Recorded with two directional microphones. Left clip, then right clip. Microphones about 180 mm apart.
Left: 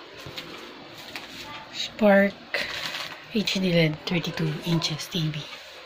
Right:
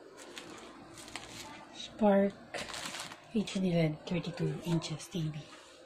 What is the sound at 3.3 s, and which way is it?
Speech, 10° right (ahead or behind).